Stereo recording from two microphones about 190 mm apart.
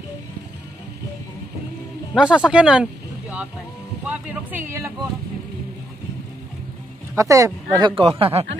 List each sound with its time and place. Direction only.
2.1 s speech: 5° right (ahead or behind)
7.2 s speech: 15° right (ahead or behind)
7.9 s speech: 30° right (ahead or behind)